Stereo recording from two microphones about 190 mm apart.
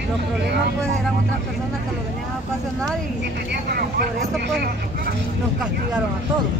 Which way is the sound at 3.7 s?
55° right (ahead or behind).